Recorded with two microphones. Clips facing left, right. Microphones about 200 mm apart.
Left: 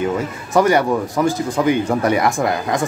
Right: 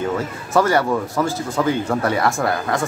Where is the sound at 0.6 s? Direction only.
15° left (ahead or behind).